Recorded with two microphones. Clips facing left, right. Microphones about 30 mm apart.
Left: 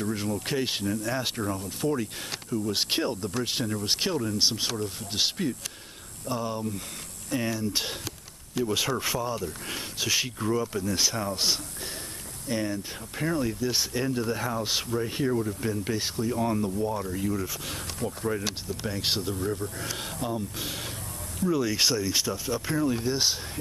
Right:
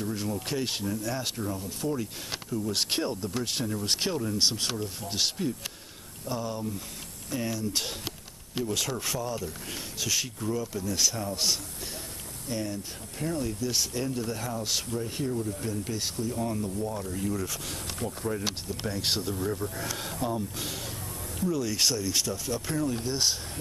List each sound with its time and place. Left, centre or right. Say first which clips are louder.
0.0 s speech: left 2 dB; centre
1.3 s speech: left 3 dB; left
15.2 s speech: left 5 dB; left
15.6 s speech: left 3 dB; left
17.1 s speech: left 2 dB; centre